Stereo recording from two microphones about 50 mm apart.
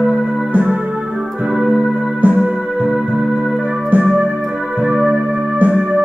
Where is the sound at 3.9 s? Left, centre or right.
Right.